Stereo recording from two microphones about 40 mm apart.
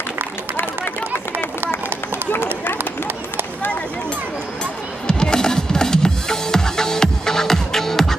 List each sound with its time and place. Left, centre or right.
2.3 s run: left
5.0 s music: centre